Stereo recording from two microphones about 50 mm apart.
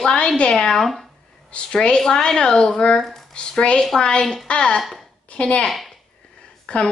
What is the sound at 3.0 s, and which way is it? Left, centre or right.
Speech, centre.